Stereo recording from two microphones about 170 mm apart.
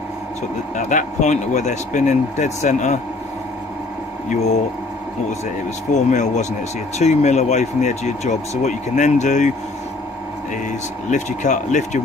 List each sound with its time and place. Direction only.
0.7 s speech: 45° left (ahead or behind)
4.3 s speech: 40° left (ahead or behind)
5.9 s speech: 45° left (ahead or behind)
11.1 s speech: 45° left (ahead or behind)